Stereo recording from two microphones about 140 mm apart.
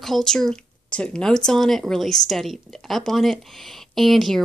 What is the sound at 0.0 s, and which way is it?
Speech, centre (ahead or behind).